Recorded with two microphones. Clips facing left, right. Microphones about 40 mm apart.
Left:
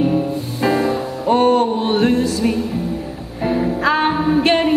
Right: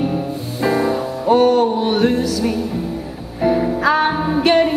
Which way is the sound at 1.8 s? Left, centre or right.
Left.